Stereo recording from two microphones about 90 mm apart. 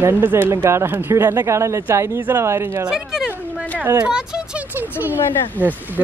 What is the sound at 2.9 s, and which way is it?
Speech, 5° right (ahead or behind).